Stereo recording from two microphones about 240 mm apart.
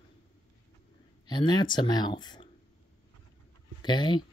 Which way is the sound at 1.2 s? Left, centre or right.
Centre.